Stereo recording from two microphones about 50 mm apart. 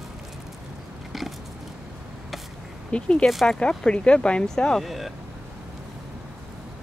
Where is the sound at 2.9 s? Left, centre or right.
Centre.